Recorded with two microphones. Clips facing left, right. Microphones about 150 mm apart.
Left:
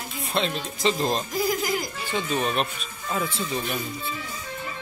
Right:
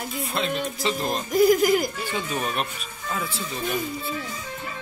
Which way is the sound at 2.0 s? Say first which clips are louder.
Left 2 dB; 10° right (ahead or behind).